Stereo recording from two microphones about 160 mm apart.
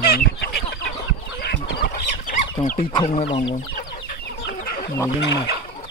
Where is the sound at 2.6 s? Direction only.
35° left (ahead or behind).